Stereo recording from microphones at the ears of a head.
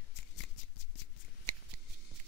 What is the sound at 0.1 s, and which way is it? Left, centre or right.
Shuffling cards, left.